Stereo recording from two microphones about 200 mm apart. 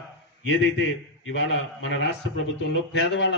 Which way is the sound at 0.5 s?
75° left (ahead or behind).